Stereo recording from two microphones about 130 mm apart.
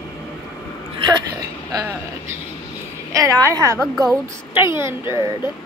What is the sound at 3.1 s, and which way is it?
Speech, 25° right (ahead or behind).